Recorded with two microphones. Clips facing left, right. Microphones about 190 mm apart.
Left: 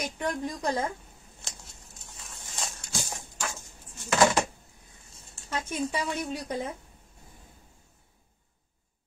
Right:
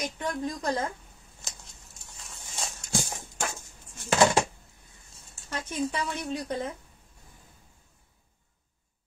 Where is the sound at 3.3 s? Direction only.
55° right (ahead or behind).